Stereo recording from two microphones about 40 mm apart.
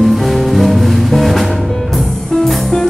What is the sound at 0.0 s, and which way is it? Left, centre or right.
Music, centre.